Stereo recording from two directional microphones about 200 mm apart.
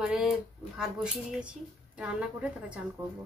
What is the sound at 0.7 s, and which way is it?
A woman's voice, 5° right (ahead or behind).